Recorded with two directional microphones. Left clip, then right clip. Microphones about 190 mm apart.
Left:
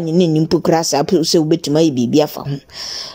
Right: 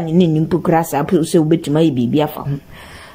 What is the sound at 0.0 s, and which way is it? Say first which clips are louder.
Speech: left 1 dB; 50° left (ahead or behind).